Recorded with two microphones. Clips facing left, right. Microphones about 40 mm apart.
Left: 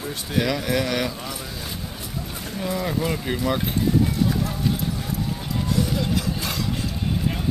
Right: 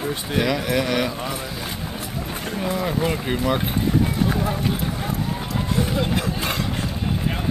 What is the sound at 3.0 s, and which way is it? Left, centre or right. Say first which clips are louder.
Speech: right 2 dB; centre.